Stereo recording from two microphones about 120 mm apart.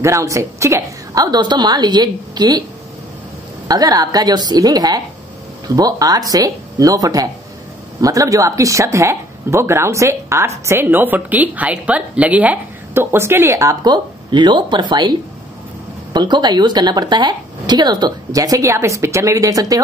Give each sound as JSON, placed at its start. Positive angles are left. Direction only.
{"t": 0.0, "sound": "speech", "side_deg": -25}
{"t": 3.6, "sound": "speech", "side_deg": -30}